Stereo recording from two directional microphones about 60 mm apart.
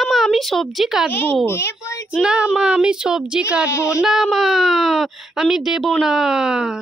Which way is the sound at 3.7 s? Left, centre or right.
Left.